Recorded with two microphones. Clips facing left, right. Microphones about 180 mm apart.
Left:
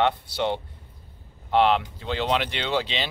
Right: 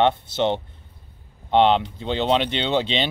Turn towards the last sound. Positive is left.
turn(degrees=-25)  # may be behind; listen again after turning